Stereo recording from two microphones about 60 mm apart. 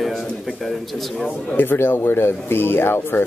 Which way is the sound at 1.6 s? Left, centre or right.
Left.